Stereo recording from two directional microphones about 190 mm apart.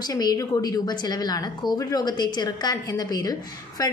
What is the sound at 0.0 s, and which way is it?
A woman's voice, 20° left (ahead or behind).